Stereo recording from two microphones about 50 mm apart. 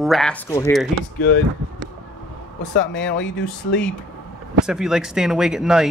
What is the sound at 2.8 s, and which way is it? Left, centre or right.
Speech, centre.